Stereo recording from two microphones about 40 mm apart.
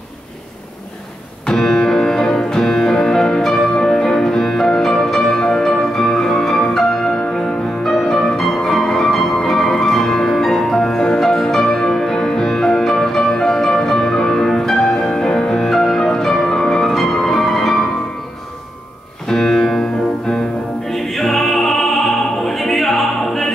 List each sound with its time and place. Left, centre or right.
1.4 s music: centre
14.3 s music: centre
19.2 s music: centre
20.8 s opera: centre